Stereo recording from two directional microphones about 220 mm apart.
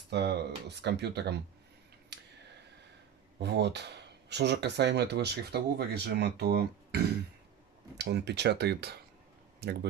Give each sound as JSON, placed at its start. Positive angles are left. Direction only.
{"t": 0.1, "sound": "speech", "side_deg": -50}
{"t": 2.1, "sound": "a sound", "side_deg": -50}
{"t": 3.3, "sound": "speech", "side_deg": -50}